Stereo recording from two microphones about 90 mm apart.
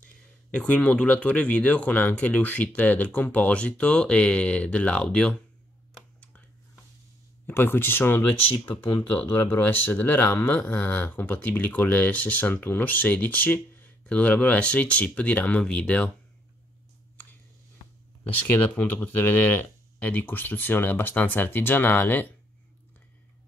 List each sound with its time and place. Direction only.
0.6 s speech: 15° left (ahead or behind)
7.4 s speech: 25° left (ahead or behind)
18.5 s speech: 20° left (ahead or behind)